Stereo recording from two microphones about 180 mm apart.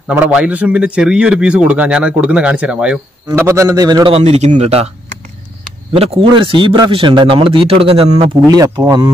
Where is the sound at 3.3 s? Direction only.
15° right (ahead or behind).